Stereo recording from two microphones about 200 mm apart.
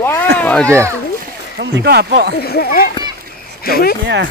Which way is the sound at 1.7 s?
55° right (ahead or behind).